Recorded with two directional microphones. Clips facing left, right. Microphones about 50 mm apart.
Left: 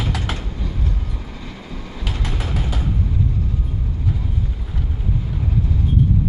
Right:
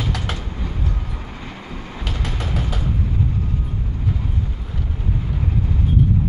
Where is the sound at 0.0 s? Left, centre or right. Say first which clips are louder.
Even; centre.